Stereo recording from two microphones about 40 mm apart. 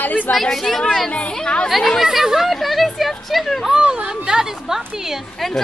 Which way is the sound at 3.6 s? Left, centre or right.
Centre.